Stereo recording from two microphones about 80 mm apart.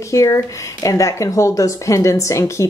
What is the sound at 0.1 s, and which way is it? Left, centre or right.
A woman's voice, left.